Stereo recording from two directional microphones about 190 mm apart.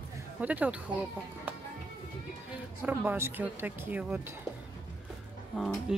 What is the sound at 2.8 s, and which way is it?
A woman's voice, 10° right (ahead or behind).